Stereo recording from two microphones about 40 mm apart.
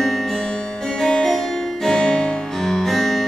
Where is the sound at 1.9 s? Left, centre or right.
Centre.